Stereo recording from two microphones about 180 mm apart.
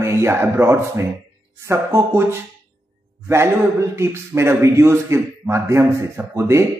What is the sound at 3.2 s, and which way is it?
Speech, 15° right (ahead or behind).